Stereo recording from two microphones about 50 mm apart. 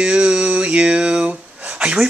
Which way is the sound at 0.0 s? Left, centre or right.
Centre.